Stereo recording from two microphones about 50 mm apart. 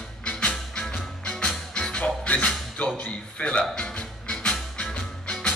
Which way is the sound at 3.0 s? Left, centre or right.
Left.